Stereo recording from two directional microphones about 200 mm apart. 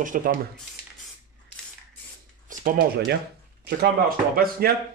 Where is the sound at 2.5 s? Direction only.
45° right (ahead or behind).